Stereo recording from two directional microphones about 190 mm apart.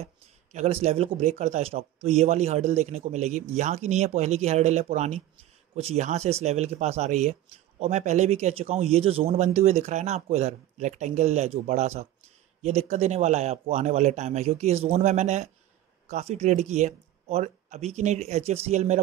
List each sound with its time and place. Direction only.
0.0 s speech: 35° right (ahead or behind)